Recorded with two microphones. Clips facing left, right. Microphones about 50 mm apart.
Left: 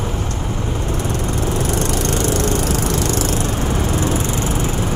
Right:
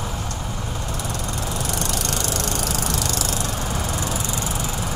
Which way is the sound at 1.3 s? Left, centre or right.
Left.